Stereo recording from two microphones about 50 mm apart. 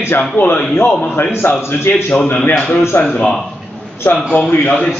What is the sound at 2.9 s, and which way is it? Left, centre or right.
A man's voice, left.